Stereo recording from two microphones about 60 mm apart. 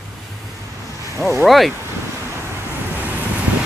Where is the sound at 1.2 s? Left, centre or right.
Centre.